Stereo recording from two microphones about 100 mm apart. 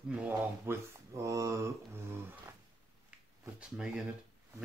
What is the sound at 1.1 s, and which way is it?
Mantra, 30° right (ahead or behind).